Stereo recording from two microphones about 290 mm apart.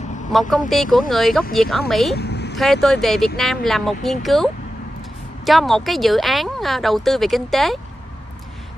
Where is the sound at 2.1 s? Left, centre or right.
Left.